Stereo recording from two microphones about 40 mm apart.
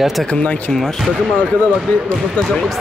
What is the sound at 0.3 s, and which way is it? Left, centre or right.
Speech, left.